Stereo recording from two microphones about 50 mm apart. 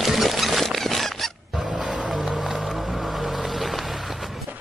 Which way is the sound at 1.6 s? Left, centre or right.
Centre.